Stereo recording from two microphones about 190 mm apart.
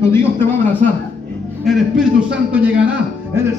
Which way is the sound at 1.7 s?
5° right (ahead or behind).